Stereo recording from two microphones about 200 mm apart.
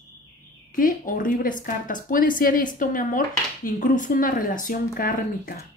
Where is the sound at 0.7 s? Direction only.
45° left (ahead or behind).